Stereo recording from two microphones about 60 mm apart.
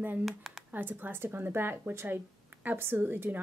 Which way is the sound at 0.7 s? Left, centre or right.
Right.